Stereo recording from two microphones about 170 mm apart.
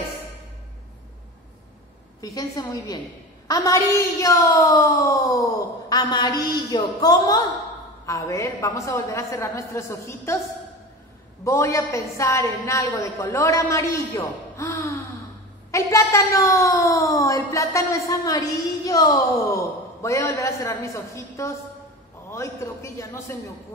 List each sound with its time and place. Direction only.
2.2 s a woman's voice: 20° left (ahead or behind)
11.4 s a woman's voice: 15° left (ahead or behind)